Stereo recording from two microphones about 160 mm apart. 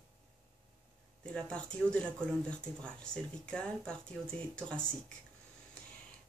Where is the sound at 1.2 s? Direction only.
5° left (ahead or behind).